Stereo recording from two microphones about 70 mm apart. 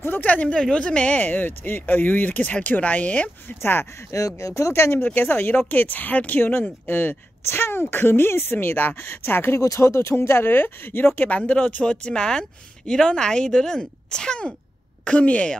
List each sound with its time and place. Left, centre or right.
0.0 s speech: left
4.4 s speech: left
5.0 s speech: left
9.6 s speech: left; by 15.5 s centre